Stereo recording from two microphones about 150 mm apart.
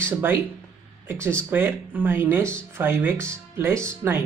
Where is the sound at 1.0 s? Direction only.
15° right (ahead or behind).